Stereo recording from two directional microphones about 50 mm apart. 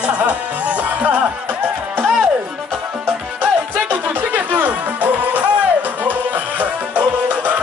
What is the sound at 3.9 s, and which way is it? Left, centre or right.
Music, right.